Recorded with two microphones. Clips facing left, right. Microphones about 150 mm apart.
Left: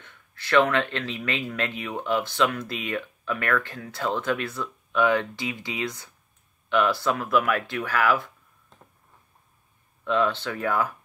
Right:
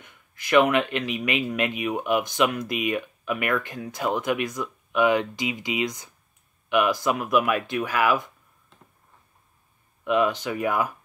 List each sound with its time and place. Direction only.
0.0 s speech: 15° right (ahead or behind)
10.0 s speech: 15° right (ahead or behind)